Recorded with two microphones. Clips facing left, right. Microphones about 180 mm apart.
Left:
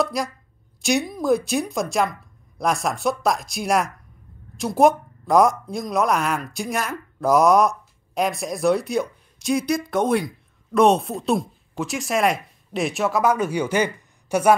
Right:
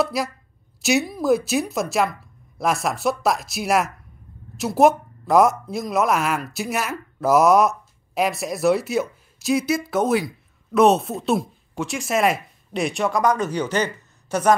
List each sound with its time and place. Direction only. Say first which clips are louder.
0.0 s speech: right 1 dB; 5° right (ahead or behind); by 14.5 s 10° left (ahead or behind)